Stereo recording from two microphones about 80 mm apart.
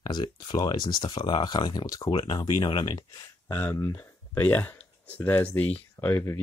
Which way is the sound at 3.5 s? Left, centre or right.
Left.